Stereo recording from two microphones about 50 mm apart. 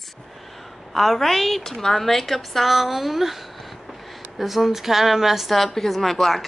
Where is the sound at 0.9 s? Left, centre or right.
Centre.